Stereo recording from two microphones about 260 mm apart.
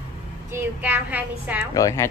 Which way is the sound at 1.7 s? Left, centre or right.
Centre.